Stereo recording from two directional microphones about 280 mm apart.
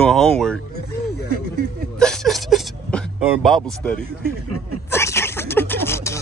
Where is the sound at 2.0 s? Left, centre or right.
Centre.